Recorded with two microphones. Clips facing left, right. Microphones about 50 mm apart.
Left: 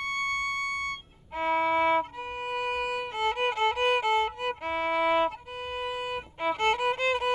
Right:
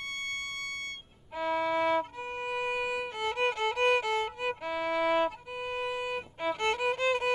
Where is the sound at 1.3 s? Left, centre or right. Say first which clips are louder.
Left 4 dB; left.